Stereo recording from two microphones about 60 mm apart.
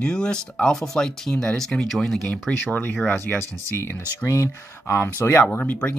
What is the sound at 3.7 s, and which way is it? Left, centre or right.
Speech, left.